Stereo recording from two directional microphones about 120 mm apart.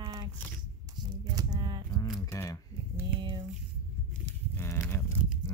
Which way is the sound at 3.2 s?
40° right (ahead or behind).